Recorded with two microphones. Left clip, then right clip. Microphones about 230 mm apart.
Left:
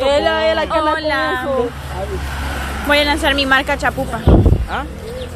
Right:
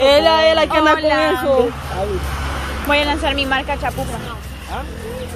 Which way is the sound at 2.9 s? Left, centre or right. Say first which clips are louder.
Left 3 dB; centre.